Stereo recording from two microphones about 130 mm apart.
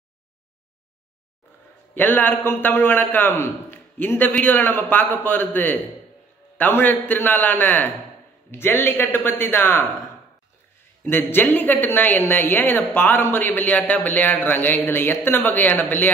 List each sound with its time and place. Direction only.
2.0 s a woman's voice: 15° left (ahead or behind)
11.1 s a woman's voice: 15° left (ahead or behind)